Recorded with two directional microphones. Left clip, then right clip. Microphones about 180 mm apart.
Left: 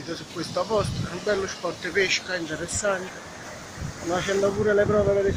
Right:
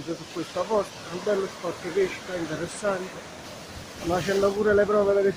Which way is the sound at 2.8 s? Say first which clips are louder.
Left 2 dB; 5° left (ahead or behind).